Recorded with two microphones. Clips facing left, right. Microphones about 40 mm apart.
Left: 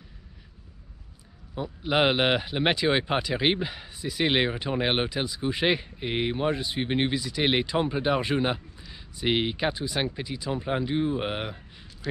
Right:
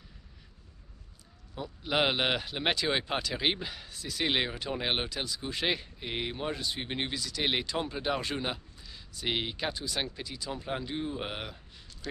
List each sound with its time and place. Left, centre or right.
1.5 s speech: centre